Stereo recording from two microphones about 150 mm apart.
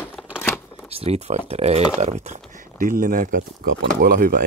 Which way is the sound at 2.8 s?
65° right (ahead or behind).